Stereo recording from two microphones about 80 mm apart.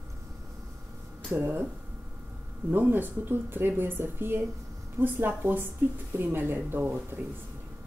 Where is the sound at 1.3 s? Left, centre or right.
Centre.